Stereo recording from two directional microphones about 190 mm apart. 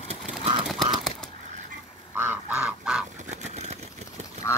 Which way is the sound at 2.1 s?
10° right (ahead or behind).